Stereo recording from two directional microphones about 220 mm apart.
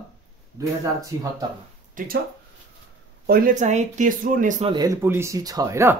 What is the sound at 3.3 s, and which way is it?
Speech, 40° right (ahead or behind).